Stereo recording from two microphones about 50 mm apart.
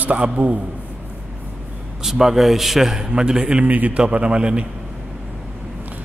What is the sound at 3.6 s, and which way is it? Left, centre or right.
Speech, right.